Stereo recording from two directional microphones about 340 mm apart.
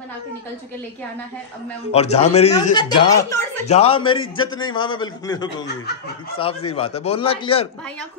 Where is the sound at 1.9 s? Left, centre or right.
Centre.